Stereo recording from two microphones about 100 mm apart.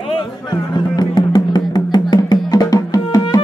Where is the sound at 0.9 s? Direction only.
45° left (ahead or behind).